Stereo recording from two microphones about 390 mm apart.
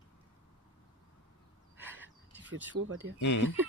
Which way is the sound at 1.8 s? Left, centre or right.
Centre.